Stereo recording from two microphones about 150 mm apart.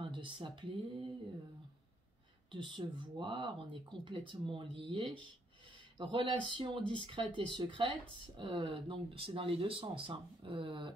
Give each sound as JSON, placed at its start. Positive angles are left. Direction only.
{"t": 0.1, "sound": "speech", "side_deg": -30}
{"t": 2.5, "sound": "speech", "side_deg": -30}